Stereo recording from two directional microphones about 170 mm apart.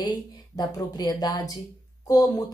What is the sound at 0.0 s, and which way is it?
Speech, 25° left (ahead or behind).